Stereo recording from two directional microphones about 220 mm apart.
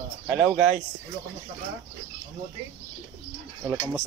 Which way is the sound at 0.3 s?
5° right (ahead or behind).